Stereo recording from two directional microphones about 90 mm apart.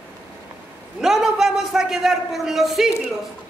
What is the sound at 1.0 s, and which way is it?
A man's voice, 5° right (ahead or behind).